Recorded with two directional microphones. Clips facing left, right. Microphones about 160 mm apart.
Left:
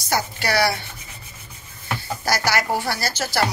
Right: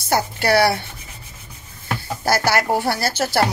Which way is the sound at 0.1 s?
55° right (ahead or behind).